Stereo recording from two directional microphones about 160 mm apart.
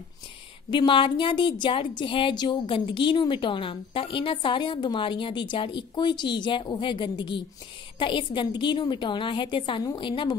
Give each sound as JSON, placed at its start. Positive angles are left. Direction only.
{"t": 0.7, "sound": "a woman's voice", "side_deg": 30}